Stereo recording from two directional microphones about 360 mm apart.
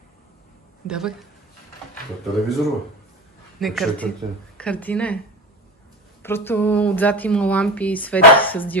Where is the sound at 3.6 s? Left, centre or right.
Centre.